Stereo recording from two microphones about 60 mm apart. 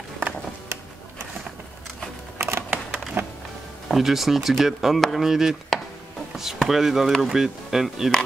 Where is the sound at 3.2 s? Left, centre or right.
Right.